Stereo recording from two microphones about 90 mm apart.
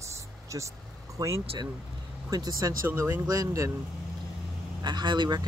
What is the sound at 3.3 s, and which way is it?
Speech, 40° right (ahead or behind).